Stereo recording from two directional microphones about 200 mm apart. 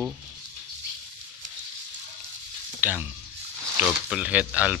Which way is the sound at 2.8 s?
10° right (ahead or behind).